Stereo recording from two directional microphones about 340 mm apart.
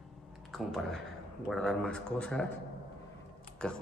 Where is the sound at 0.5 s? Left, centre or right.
Centre.